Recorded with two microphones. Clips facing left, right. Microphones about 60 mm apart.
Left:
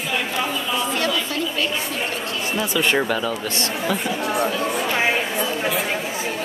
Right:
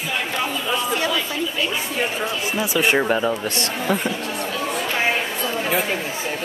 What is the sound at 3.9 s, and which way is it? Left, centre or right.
Speech, right.